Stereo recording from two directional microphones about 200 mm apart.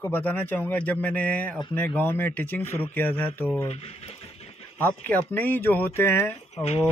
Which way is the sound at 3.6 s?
30° left (ahead or behind).